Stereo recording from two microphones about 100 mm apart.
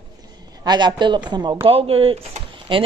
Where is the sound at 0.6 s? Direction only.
45° right (ahead or behind).